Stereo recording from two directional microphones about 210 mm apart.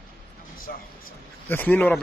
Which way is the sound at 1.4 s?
10° left (ahead or behind).